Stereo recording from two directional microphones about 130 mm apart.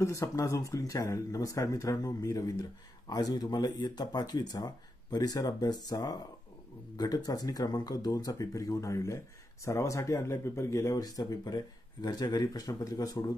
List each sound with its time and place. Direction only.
0.0 s speech: 20° left (ahead or behind)